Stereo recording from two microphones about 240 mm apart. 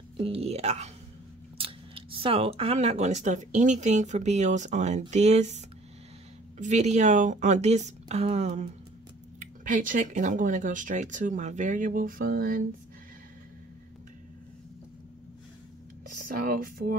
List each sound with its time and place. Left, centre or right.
0.2 s speech: right
6.6 s speech: right
16.3 s speech: right